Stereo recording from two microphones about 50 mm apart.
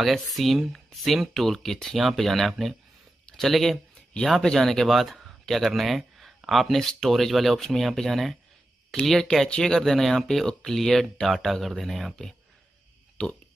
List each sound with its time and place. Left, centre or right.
0.0 s speech: centre
6.8 s speech: centre
13.2 s speech: left